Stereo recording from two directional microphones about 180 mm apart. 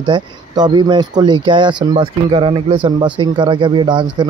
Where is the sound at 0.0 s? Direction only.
25° right (ahead or behind).